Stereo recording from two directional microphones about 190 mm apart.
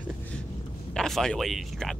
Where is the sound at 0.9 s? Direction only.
5° left (ahead or behind).